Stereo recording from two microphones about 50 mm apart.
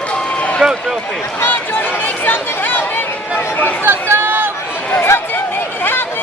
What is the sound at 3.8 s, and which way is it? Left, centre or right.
Chatter, right.